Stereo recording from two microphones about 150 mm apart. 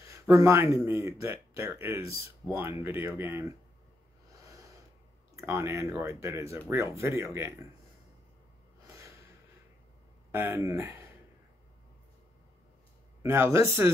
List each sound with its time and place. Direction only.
0.0 s speech: 20° right (ahead or behind)
5.3 s speech: 20° right (ahead or behind)
8.8 s snort: 20° right (ahead or behind)
10.3 s speech: 15° right (ahead or behind)
13.2 s speech: 15° right (ahead or behind)